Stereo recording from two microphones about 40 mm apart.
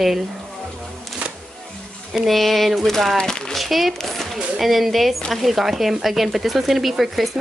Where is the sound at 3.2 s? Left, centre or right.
Centre.